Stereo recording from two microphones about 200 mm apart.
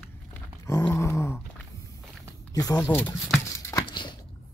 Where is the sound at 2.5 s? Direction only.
15° left (ahead or behind).